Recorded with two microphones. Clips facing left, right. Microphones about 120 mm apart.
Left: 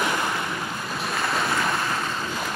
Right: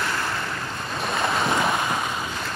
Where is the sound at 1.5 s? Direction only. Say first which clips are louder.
Right 2 dB; 15° right (ahead or behind).